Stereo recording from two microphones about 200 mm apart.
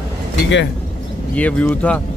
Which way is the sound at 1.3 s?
5° left (ahead or behind).